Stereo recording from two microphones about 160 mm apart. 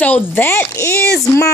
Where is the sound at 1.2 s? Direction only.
20° left (ahead or behind).